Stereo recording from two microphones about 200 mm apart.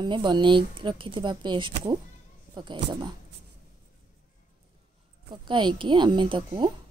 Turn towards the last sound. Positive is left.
turn(degrees=-25)  # may be behind; listen again after turning